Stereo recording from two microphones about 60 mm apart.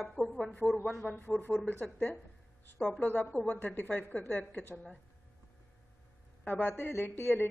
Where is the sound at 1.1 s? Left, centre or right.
Left.